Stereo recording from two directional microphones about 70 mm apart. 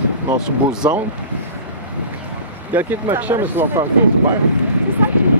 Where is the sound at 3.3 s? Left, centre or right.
Right.